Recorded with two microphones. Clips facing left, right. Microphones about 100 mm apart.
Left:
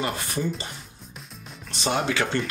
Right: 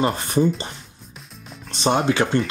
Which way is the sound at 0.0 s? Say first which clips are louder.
Right 8 dB; 30° right (ahead or behind).